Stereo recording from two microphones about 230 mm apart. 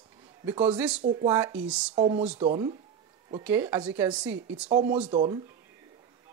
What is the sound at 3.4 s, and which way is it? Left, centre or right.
Speech, centre.